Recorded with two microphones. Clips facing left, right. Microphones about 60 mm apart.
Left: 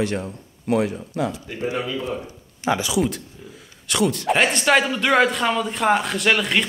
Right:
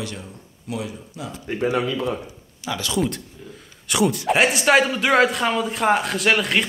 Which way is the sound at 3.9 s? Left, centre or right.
Centre.